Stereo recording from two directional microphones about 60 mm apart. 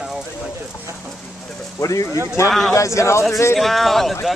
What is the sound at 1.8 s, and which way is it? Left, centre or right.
Speech, left.